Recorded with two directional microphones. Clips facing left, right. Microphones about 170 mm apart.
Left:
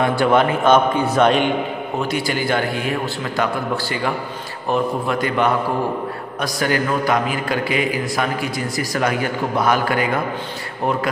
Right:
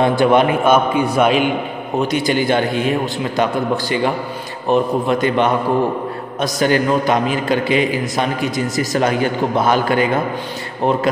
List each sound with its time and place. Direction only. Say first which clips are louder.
0.0 s a man's voice: right 3 dB; 20° right (ahead or behind)
2.0 s a man's voice: right 6 dB; 20° right (ahead or behind)